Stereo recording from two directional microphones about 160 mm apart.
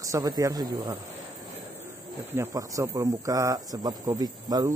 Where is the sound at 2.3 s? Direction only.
20° right (ahead or behind).